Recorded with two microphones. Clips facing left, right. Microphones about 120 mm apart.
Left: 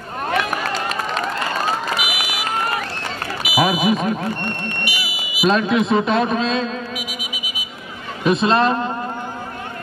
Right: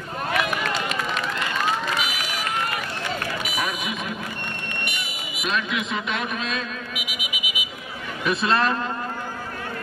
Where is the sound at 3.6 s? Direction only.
35° left (ahead or behind).